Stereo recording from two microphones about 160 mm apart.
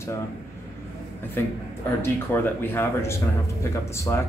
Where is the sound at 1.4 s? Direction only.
15° left (ahead or behind).